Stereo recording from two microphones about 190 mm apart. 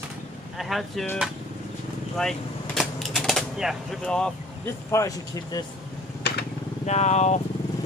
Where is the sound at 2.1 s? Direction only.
Centre (ahead or behind).